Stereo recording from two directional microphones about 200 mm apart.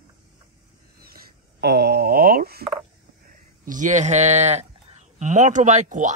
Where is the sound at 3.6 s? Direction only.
40° right (ahead or behind).